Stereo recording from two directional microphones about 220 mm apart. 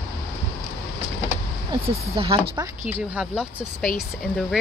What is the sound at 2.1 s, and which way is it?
Speech, 25° right (ahead or behind).